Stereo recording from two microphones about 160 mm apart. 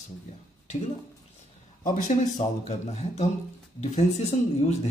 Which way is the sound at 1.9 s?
50° left (ahead or behind).